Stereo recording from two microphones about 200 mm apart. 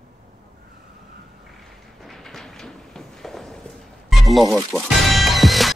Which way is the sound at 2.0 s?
Centre (ahead or behind).